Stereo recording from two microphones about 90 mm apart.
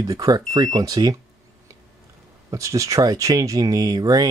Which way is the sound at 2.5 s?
40° right (ahead or behind).